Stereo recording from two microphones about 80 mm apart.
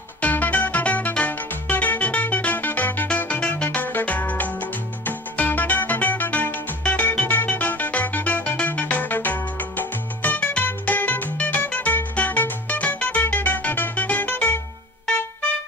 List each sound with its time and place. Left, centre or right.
0.2 s music: centre